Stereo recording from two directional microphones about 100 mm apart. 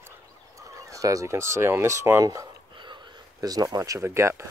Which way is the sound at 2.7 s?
50° right (ahead or behind).